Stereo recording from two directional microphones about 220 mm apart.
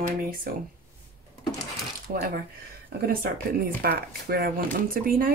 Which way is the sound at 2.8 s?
45° right (ahead or behind).